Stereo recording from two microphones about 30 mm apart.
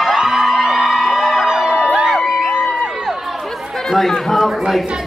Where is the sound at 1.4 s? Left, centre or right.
Right.